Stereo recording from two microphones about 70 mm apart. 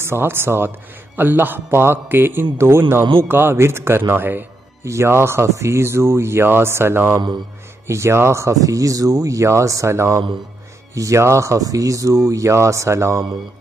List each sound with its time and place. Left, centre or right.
0.0 s a man's voice: right
4.8 s a man's voice: right
8.5 s speech: right